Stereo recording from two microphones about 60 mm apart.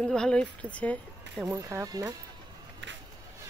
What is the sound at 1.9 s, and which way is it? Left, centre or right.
Speech, right.